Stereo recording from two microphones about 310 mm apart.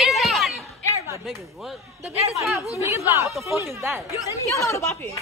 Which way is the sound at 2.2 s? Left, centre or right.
Centre.